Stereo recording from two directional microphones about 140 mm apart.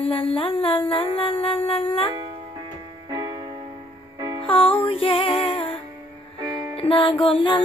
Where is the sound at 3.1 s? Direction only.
25° right (ahead or behind).